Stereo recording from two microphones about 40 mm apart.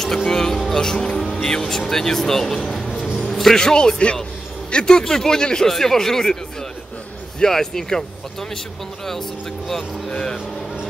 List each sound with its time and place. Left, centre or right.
0.0 s speech: centre
3.2 s music: centre
3.5 s a man's voice: centre
7.3 s speech: centre
9.7 s speech: centre